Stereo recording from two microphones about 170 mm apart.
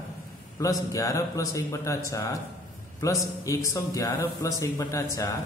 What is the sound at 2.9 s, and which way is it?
A man's voice, 20° left (ahead or behind).